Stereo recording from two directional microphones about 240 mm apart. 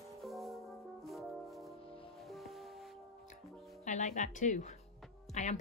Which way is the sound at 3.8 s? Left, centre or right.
Left.